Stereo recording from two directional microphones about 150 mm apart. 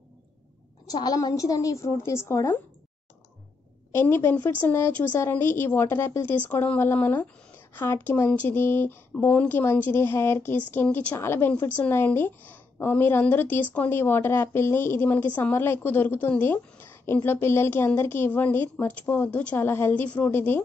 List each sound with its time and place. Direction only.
0.8 s a woman's voice: 25° left (ahead or behind)
3.9 s a woman's voice: 15° left (ahead or behind)